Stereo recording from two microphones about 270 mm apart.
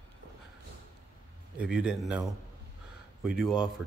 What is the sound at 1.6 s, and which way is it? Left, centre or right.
Speech, centre.